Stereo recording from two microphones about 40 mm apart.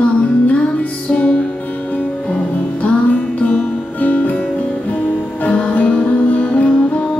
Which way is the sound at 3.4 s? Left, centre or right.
Left.